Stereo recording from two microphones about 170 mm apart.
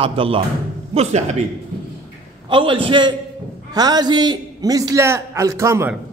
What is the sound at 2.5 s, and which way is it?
A man's voice, 30° right (ahead or behind).